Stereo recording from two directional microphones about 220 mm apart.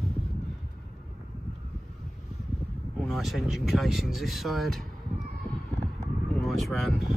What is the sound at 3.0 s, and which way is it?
Speech, centre (ahead or behind).